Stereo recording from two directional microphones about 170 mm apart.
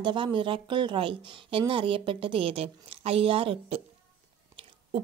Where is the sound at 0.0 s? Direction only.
30° right (ahead or behind).